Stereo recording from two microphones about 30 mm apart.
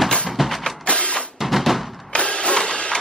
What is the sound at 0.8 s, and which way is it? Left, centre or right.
Drum, left.